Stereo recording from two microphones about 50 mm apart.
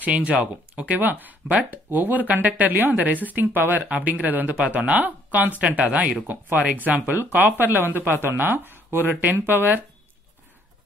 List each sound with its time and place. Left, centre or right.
0.0 s speech: right
9.1 s speech: right